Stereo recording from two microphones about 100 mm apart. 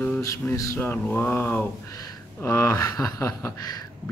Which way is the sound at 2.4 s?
30° left (ahead or behind).